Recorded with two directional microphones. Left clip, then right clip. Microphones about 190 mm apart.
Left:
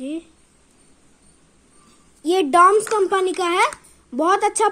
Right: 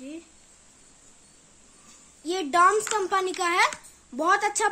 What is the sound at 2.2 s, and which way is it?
Speech, 35° left (ahead or behind).